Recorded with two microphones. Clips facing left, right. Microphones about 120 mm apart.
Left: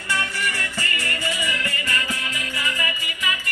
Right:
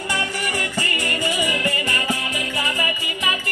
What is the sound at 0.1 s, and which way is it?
Music, 20° right (ahead or behind).